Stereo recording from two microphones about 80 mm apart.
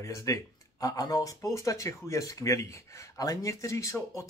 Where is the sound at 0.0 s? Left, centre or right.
Left.